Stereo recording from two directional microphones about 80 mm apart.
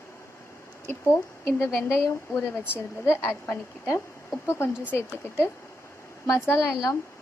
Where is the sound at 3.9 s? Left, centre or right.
Left.